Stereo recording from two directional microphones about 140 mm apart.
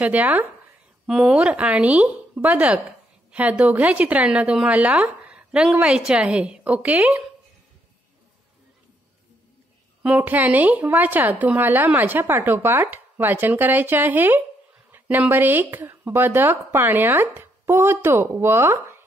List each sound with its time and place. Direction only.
0.0 s a woman's voice: 10° right (ahead or behind)
10.0 s a woman's voice: 10° right (ahead or behind)